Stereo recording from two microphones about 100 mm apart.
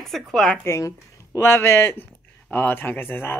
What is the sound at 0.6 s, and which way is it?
Speech, 30° left (ahead or behind).